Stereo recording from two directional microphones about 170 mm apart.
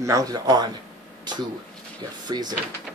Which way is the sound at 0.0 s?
20° right (ahead or behind).